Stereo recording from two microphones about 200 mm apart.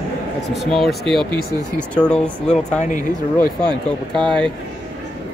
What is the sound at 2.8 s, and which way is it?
Speech, 40° left (ahead or behind).